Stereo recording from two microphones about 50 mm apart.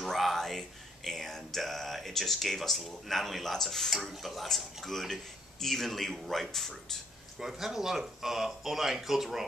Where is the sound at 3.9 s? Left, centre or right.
Centre.